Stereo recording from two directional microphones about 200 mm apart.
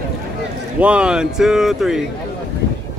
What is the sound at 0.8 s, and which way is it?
Speech, 5° right (ahead or behind).